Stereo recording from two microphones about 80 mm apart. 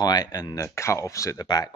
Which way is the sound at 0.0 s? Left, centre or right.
Left.